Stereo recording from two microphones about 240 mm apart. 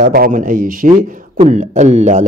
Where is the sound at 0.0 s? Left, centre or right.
Right.